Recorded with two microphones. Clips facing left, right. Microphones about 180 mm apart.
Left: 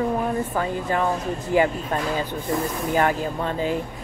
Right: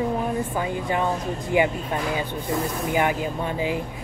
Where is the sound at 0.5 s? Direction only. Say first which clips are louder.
Left 1 dB; 15° right (ahead or behind).